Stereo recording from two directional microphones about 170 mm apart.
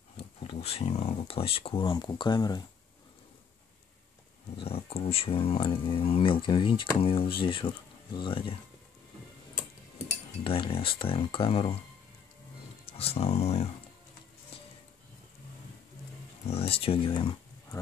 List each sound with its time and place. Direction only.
0.2 s speech: 35° left (ahead or behind)
4.6 s speech: 35° left (ahead or behind)
10.4 s speech: 30° left (ahead or behind)
12.8 s speech: 35° left (ahead or behind)
16.4 s speech: 35° left (ahead or behind)